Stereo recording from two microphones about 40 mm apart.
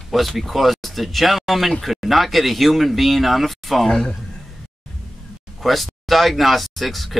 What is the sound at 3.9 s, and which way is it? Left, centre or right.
Speech, centre.